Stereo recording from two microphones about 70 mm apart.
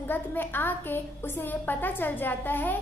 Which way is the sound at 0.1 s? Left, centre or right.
Left.